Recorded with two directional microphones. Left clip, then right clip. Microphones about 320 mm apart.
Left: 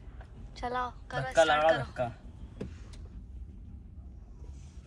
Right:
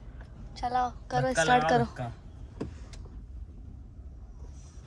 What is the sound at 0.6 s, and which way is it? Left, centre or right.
A woman's voice, centre.